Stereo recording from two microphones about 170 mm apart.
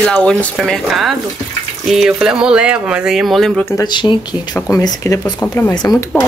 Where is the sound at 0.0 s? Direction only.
5° left (ahead or behind).